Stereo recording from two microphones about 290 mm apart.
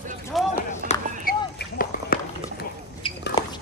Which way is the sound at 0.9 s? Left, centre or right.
Left.